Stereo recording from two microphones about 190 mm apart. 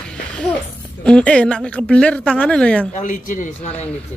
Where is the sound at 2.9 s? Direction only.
40° left (ahead or behind).